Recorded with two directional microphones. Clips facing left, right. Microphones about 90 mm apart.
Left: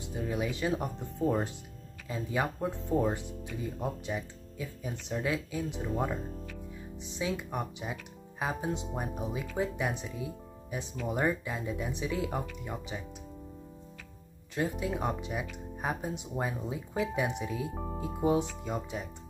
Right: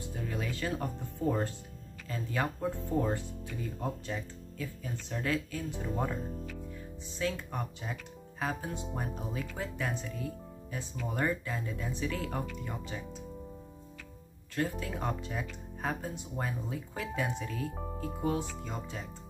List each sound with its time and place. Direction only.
0.0 s speech: 15° left (ahead or behind)
14.5 s speech: 15° left (ahead or behind)